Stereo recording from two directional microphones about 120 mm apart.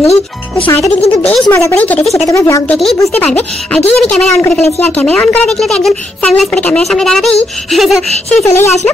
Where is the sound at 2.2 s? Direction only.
25° left (ahead or behind).